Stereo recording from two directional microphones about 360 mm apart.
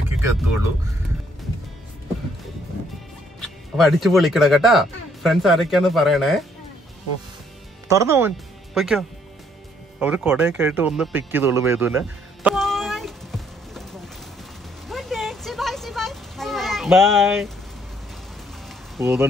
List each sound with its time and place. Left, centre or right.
3.3 s speech: centre
7.9 s speech: centre
9.9 s music: centre
14.9 s a sound: centre
18.9 s speech: centre